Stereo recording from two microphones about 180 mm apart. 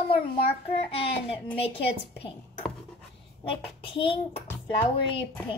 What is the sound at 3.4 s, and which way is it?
A child's voice, 30° left (ahead or behind).